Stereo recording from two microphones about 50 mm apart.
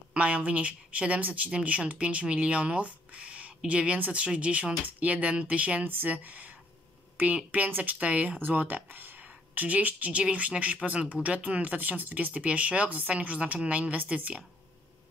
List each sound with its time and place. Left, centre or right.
0.1 s speech: right
5.9 s speech: right